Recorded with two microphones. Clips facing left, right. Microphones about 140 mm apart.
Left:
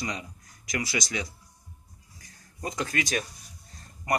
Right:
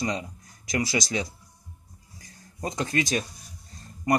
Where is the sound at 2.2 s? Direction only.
30° right (ahead or behind).